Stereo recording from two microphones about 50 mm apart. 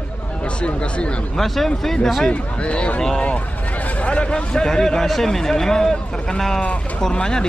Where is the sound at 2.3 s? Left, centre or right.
Left.